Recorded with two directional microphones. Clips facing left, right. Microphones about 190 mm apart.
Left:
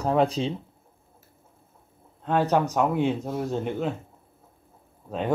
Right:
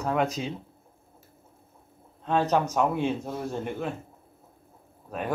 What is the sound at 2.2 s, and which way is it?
Speech, 15° left (ahead or behind).